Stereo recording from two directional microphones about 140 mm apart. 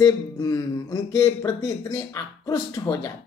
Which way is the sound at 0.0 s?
25° left (ahead or behind).